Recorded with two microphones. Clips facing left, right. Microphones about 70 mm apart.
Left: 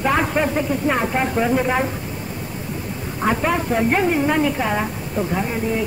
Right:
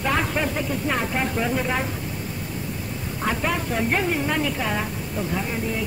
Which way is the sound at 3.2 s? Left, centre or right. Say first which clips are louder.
Left 5 dB; centre.